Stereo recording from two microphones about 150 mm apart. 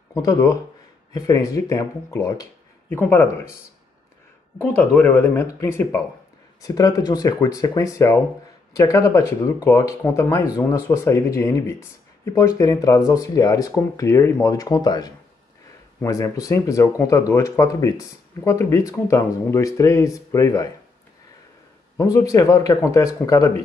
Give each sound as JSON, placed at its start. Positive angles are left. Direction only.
{"t": 0.1, "sound": "speech", "side_deg": 20}
{"t": 4.6, "sound": "speech", "side_deg": 10}
{"t": 21.9, "sound": "speech", "side_deg": 20}